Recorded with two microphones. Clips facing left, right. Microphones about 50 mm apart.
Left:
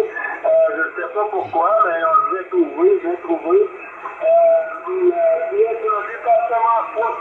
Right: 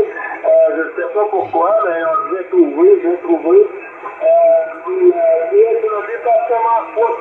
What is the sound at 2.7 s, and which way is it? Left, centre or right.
Speech, centre.